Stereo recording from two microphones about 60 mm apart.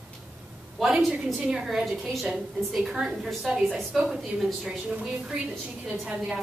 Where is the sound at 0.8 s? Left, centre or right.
Centre.